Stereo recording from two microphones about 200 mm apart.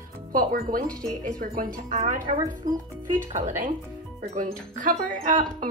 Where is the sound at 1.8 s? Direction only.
35° right (ahead or behind).